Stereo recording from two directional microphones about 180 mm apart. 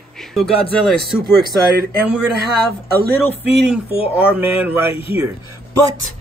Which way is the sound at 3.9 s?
30° left (ahead or behind).